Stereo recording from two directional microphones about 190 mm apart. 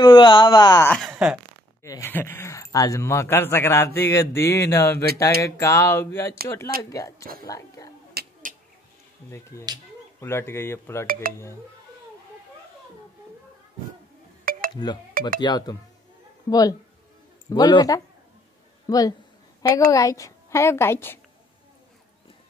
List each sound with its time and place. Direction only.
0.0 s speech: 25° left (ahead or behind)
0.8 s speech: 5° left (ahead or behind)
1.1 s speech: 5° right (ahead or behind)
1.8 s speech: 15° left (ahead or behind)
7.4 s whispering: 20° left (ahead or behind)
8.1 s a sound: 50° right (ahead or behind)
9.3 s speech: 15° left (ahead or behind)
14.4 s chink: 50° right (ahead or behind)
15.1 s speech: 50° right (ahead or behind)
15.4 s speech: 20° left (ahead or behind)